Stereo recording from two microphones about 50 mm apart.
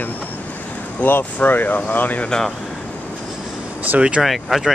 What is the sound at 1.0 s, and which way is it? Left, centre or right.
Speech, left.